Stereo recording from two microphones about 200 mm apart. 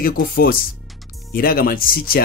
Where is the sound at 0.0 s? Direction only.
45° left (ahead or behind).